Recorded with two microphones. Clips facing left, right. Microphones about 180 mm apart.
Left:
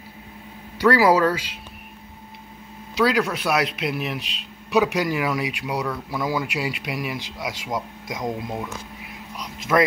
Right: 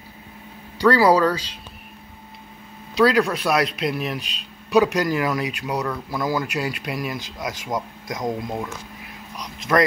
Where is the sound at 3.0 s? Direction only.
5° left (ahead or behind).